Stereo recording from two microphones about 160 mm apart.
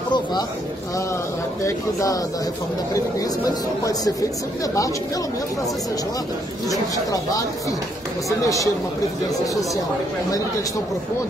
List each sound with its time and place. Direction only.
0.1 s a sound: 25° left (ahead or behind)
1.6 s speech: 20° left (ahead or behind)
6.7 s speech: 20° left (ahead or behind)